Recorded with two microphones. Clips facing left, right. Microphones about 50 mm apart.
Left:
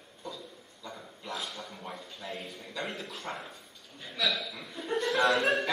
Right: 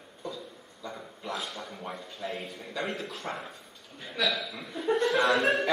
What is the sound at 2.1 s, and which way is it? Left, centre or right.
A man's voice, centre.